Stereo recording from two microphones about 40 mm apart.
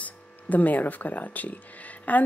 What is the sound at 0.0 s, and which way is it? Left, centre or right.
Speech, left.